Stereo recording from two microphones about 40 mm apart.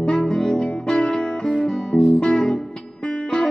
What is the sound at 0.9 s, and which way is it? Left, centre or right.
Music, left.